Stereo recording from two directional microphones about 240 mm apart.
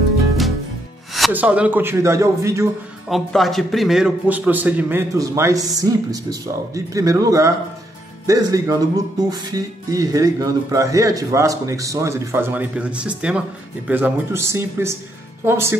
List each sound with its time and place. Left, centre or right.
1.1 s a man's voice: centre
3.1 s a man's voice: centre